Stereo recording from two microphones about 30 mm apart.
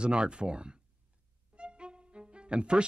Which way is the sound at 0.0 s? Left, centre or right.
Right.